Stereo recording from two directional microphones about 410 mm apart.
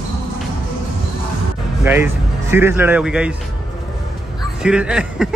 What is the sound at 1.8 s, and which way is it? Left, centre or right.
Speech, centre.